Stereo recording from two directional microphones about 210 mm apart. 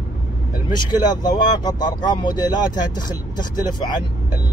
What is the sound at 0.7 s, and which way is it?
Speech, 20° left (ahead or behind).